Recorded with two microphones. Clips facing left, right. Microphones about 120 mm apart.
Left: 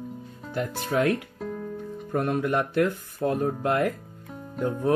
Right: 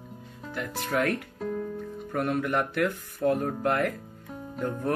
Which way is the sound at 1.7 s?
25° left (ahead or behind).